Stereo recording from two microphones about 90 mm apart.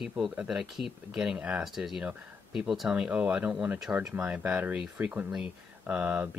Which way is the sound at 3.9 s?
25° right (ahead or behind).